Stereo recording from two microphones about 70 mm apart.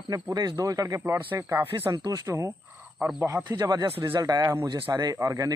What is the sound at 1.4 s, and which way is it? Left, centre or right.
Speech, right.